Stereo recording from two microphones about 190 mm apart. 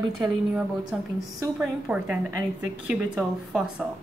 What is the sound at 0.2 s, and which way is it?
A woman's voice, 5° right (ahead or behind).